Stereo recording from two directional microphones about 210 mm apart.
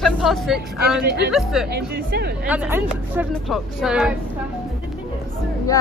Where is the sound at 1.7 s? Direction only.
50° right (ahead or behind).